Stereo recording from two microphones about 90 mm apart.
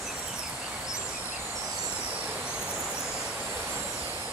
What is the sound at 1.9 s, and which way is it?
Vehicle, 15° right (ahead or behind).